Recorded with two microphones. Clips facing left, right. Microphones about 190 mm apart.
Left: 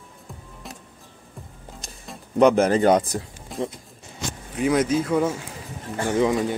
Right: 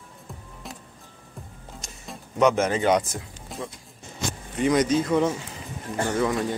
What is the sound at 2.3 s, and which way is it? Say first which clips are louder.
Speech: left 4 dB; 35° left (ahead or behind).